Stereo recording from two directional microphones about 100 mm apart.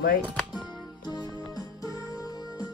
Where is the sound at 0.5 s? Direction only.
45° left (ahead or behind).